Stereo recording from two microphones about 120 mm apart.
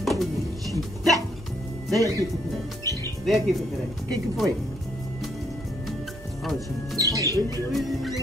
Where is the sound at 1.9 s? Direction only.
30° right (ahead or behind).